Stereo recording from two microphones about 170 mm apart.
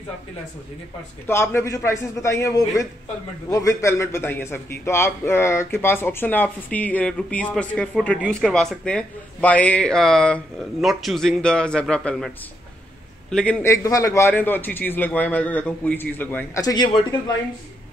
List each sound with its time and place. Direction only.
1.2 s a man's voice: 15° left (ahead or behind)
13.3 s a man's voice: 5° left (ahead or behind); by 17.0 s 25° left (ahead or behind)